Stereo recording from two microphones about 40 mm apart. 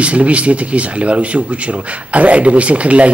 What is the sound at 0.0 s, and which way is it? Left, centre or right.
A man's voice, right.